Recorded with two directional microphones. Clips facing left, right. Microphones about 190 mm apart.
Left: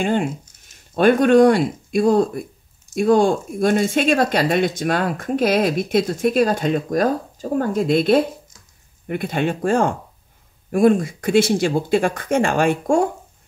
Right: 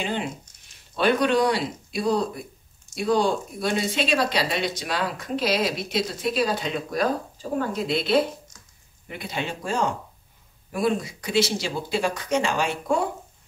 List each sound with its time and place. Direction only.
0.0 s speech: 50° left (ahead or behind)